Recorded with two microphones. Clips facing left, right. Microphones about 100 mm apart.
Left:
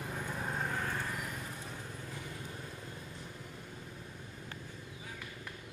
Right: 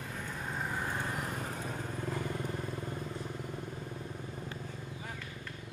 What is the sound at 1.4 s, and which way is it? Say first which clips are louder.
Vehicle: right 6 dB; 50° right (ahead or behind).